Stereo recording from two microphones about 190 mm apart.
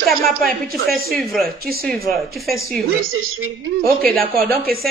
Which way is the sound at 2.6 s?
50° right (ahead or behind).